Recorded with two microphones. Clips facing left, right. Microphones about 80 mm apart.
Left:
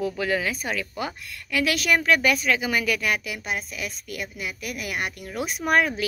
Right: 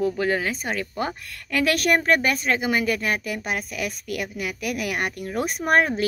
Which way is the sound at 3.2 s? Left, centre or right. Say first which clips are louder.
Right 3 dB; right.